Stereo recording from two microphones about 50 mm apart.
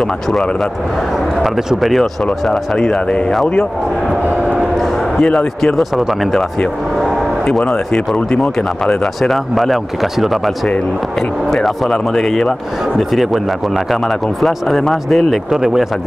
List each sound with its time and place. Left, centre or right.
0.0 s speech: centre
2.9 s speech: centre
4.7 s a sound: centre
5.2 s speech: centre
5.8 s speech: centre
8.3 s speech: centre
9.0 s speech: centre
15.5 s speech: centre